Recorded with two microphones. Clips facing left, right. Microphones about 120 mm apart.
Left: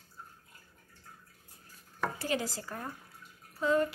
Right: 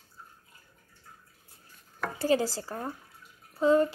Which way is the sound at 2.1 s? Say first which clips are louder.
Right 12 dB; 30° right (ahead or behind).